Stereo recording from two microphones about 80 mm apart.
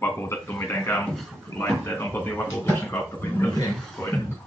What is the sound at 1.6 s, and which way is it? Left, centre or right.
Speech, left.